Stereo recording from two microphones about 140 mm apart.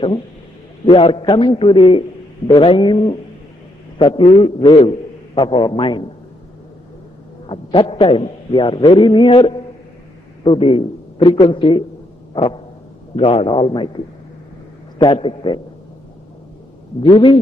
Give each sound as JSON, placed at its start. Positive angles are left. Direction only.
{"t": 0.8, "sound": "a man's voice", "side_deg": 40}
{"t": 7.4, "sound": "a man's voice", "side_deg": 40}
{"t": 13.1, "sound": "a man's voice", "side_deg": 40}
{"t": 15.1, "sound": "a man's voice", "side_deg": 35}
{"t": 17.0, "sound": "a man's voice", "side_deg": 35}